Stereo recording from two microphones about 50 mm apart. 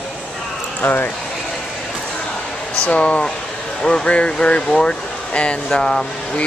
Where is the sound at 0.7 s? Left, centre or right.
Left.